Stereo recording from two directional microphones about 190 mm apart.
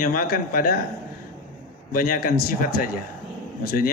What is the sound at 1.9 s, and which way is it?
A man's voice, 50° left (ahead or behind).